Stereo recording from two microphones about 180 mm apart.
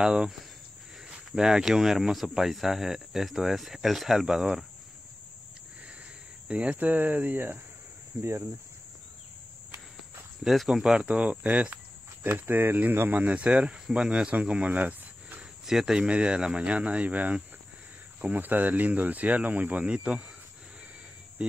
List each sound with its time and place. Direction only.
0.0 s speech: 5° right (ahead or behind)
6.4 s speech: 5° right (ahead or behind)
9.9 s speech: centre (ahead or behind)
21.4 s speech: 5° right (ahead or behind)